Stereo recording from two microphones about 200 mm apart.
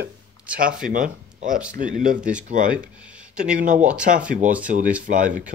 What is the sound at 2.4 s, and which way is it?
Speech, 40° right (ahead or behind).